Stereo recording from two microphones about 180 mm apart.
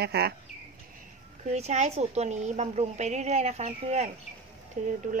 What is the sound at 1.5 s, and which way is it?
A woman's voice, 40° right (ahead or behind).